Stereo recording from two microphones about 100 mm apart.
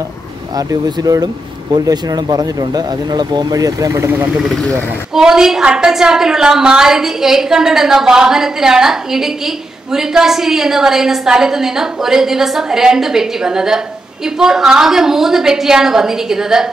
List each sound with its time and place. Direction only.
0.6 s speech: 40° right (ahead or behind)
4.4 s a woman's voice: centre (ahead or behind)